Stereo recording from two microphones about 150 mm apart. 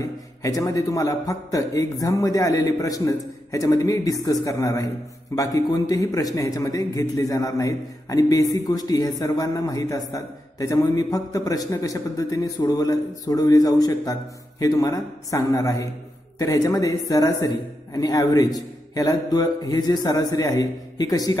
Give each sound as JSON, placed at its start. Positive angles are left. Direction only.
{"t": 0.0, "sound": "speech", "side_deg": 20}